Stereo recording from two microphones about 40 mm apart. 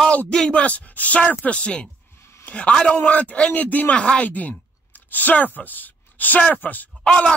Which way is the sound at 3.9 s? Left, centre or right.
Left.